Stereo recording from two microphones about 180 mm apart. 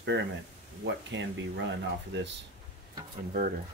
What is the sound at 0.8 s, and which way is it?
Speech, 85° right.